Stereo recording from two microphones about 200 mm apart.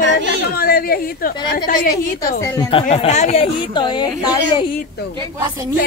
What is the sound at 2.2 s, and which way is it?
Speech, 15° left (ahead or behind).